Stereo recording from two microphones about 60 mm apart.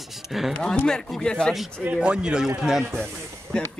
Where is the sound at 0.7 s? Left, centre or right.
Centre.